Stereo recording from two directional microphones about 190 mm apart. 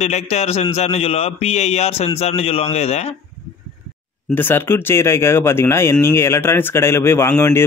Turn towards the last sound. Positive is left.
turn(degrees=10)  # may be behind; listen again after turning